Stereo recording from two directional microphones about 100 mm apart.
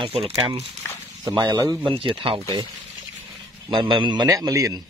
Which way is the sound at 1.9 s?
60° right (ahead or behind).